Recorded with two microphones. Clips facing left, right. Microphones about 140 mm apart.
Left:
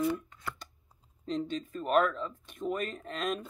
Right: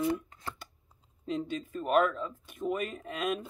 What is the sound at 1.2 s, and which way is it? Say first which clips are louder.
Speech: even; 5° right (ahead or behind).